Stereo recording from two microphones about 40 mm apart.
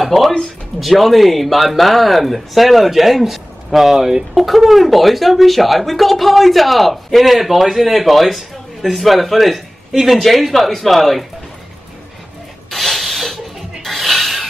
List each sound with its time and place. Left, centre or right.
0.0 s speech: centre
4.3 s speech: centre
12.7 s a sound: centre